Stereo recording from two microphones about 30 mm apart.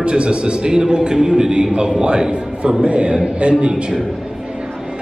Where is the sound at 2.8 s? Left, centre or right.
Right.